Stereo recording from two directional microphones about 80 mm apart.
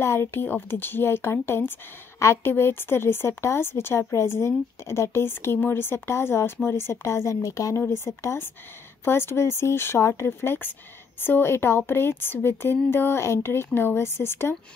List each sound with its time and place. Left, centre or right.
0.0 s a woman's voice: left